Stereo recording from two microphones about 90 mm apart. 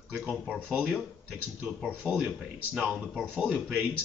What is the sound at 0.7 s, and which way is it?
Speech, 5° right (ahead or behind).